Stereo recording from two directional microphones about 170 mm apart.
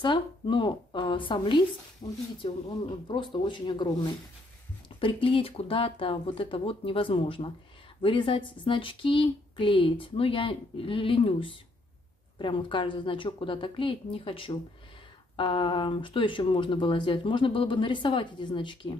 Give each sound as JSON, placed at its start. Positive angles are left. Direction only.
{"t": 0.0, "sound": "speech", "side_deg": 30}
{"t": 5.0, "sound": "speech", "side_deg": 30}